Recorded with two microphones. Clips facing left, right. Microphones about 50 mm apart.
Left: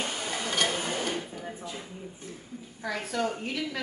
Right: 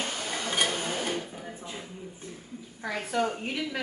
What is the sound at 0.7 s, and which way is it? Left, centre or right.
Tick-tock, centre.